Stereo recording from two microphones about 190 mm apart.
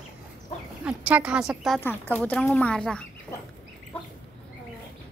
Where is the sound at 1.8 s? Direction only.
10° left (ahead or behind).